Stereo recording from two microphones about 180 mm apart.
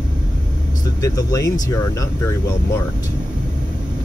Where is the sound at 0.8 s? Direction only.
20° left (ahead or behind).